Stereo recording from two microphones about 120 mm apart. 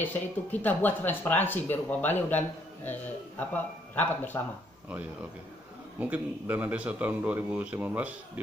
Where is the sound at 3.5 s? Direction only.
15° left (ahead or behind).